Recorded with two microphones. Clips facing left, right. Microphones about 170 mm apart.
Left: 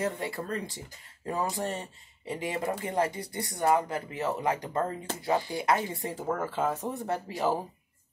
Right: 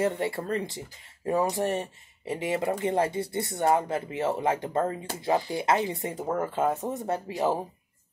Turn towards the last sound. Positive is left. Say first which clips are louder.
# right 2 dB
turn(degrees=-20)  # may be behind; listen again after turning